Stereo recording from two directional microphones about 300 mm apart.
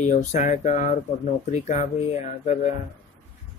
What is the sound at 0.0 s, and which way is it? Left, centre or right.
Speech, left.